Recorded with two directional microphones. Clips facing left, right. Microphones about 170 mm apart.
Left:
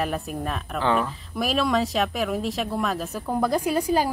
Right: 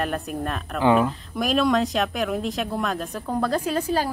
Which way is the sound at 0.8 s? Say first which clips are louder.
Right 5 dB; 15° right (ahead or behind).